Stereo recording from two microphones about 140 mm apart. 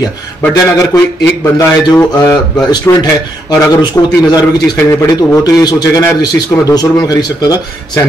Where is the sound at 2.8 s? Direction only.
25° left (ahead or behind).